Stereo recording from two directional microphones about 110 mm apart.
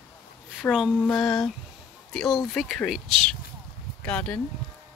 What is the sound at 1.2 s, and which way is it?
Speech, centre (ahead or behind).